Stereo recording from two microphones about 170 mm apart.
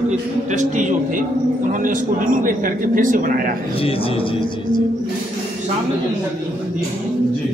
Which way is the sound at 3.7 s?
35° left (ahead or behind).